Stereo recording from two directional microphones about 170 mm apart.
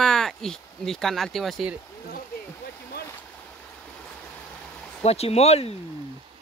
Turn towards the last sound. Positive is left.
turn(degrees=40)  # may be behind; listen again after turning